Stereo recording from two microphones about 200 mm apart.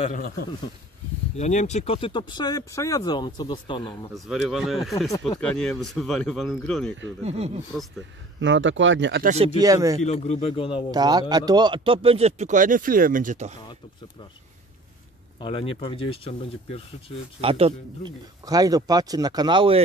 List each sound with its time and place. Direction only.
0.0 s speech: 40° left (ahead or behind); by 4.1 s 25° left (ahead or behind)
4.1 s speech: centre (ahead or behind)
7.2 s speech: 30° right (ahead or behind)
8.4 s speech: 65° right (ahead or behind)
9.2 s speech: 35° right (ahead or behind)
9.6 s speech: 15° right (ahead or behind)
10.0 s speech: 35° left (ahead or behind)
10.9 s speech: 20° right (ahead or behind); by 13.5 s 40° right (ahead or behind)
15.4 s speech: 25° left (ahead or behind)
17.4 s speech: 30° right (ahead or behind)
18.4 s speech: 20° right (ahead or behind)